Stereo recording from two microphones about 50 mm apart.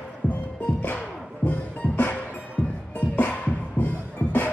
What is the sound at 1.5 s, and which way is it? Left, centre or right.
Music, left.